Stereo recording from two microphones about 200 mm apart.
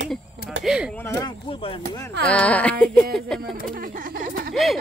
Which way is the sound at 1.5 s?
25° left (ahead or behind).